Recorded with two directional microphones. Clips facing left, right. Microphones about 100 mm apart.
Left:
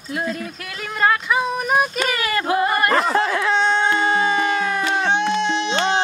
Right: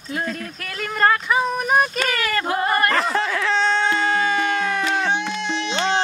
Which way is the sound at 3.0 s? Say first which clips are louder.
Left 3 dB; 35° left (ahead or behind).